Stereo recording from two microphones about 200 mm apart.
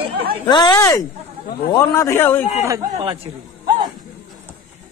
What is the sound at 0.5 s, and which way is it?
A man's voice, 20° left (ahead or behind).